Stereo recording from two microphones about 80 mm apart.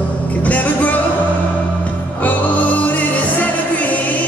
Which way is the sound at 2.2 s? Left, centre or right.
Centre.